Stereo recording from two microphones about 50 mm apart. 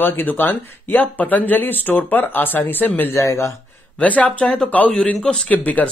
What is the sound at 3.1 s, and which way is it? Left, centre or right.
Speech, left.